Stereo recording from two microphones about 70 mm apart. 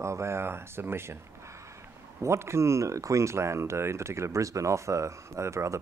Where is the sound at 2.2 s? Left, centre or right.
Right.